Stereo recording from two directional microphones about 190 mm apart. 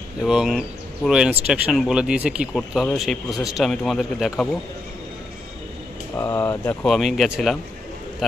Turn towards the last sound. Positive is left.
turn(degrees=0)  # may be behind; listen again after turning